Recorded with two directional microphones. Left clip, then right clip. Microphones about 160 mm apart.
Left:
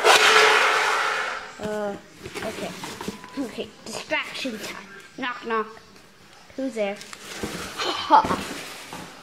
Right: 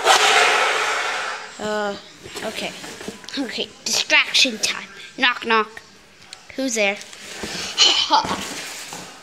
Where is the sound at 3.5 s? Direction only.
5° right (ahead or behind).